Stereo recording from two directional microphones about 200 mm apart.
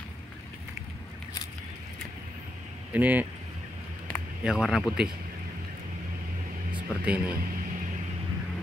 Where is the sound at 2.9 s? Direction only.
5° right (ahead or behind).